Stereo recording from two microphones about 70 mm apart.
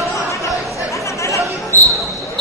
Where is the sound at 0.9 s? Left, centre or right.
Left.